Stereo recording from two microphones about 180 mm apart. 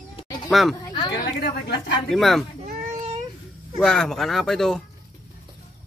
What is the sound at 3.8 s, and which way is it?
Speech, 5° left (ahead or behind).